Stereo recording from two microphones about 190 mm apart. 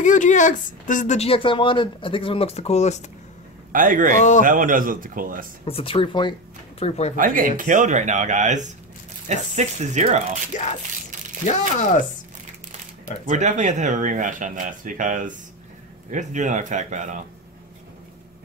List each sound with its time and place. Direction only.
0.0 s speech: 40° left (ahead or behind)
3.7 s speech: 45° right (ahead or behind)
5.7 s speech: 30° left (ahead or behind)
7.2 s speech: 45° right (ahead or behind)
10.5 s speech: 40° left (ahead or behind)
13.3 s speech: 40° right (ahead or behind)